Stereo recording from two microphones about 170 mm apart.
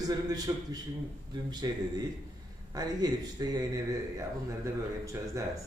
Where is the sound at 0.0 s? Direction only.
25° right (ahead or behind).